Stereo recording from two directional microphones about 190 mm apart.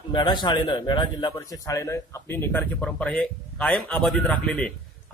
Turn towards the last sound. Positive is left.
turn(degrees=5)  # may be behind; listen again after turning